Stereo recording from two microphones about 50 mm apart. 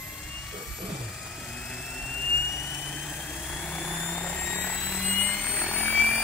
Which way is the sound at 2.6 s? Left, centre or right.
Left.